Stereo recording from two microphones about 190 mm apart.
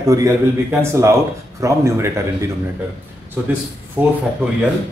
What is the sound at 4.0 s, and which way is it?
Speech, 10° right (ahead or behind).